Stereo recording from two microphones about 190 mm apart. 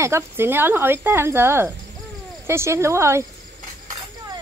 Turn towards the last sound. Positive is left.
turn(degrees=-15)  # may be behind; listen again after turning